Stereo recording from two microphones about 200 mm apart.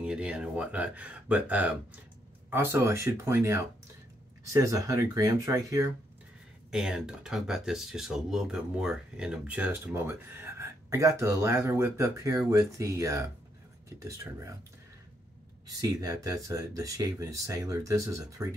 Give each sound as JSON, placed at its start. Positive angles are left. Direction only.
{"t": 0.0, "sound": "speech", "side_deg": -5}
{"t": 6.7, "sound": "speech", "side_deg": -5}
{"t": 15.6, "sound": "speech", "side_deg": -15}